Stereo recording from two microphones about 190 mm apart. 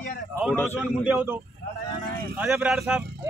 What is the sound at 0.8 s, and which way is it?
Speech, 5° right (ahead or behind).